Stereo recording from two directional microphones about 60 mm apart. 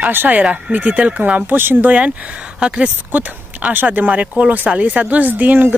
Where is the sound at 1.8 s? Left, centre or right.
Right.